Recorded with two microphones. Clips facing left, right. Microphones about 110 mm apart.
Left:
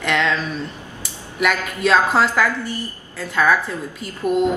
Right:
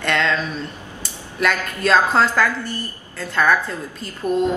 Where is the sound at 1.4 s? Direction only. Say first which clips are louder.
Left 1 dB; 5° left (ahead or behind).